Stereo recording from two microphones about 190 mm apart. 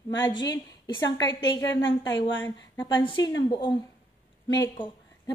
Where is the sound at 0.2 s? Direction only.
20° left (ahead or behind).